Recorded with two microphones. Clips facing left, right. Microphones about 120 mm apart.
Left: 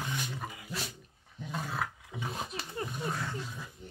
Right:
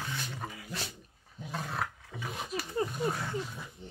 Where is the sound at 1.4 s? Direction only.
Centre (ahead or behind).